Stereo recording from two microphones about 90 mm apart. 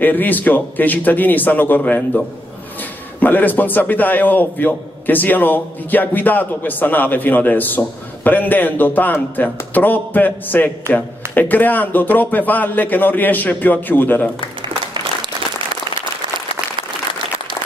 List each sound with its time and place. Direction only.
0.0 s a man's voice: 20° left (ahead or behind)